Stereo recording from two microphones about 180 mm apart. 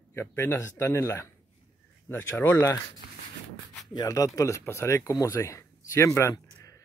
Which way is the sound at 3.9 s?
20° left (ahead or behind).